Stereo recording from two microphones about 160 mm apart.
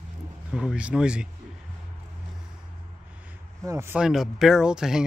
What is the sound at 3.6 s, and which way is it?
Speech, 15° right (ahead or behind).